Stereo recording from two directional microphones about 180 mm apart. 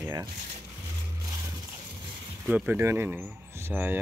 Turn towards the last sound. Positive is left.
turn(degrees=-10)  # may be behind; listen again after turning